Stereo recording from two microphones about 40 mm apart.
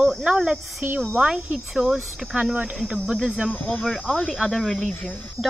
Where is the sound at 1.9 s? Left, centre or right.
Centre.